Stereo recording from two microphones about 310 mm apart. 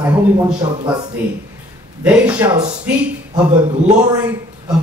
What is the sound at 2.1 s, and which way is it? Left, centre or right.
Speech, centre.